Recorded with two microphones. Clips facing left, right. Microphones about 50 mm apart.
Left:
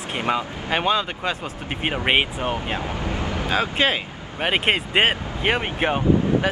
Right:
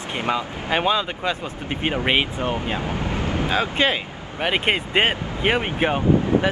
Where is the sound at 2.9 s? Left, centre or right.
Right.